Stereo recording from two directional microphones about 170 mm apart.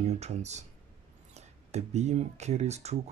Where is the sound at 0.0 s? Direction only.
40° right (ahead or behind).